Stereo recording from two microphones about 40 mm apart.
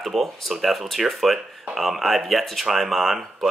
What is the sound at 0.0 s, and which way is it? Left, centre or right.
Speech, centre.